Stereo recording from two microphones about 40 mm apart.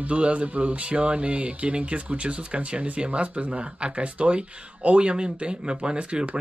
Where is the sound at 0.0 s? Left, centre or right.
Right.